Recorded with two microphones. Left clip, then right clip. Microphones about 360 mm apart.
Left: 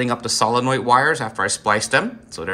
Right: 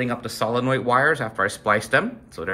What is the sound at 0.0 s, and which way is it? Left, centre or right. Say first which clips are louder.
Speech: left 6 dB; centre.